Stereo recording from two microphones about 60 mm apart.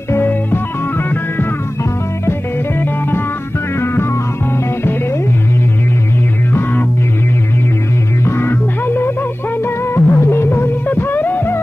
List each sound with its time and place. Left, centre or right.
0.1 s music: left
3.8 s music: left
6.5 s music: left
8.3 s music: left